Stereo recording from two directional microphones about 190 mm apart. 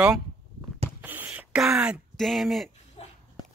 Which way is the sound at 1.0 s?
10° right (ahead or behind).